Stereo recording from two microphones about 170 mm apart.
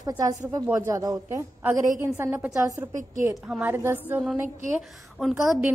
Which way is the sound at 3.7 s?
15° right (ahead or behind).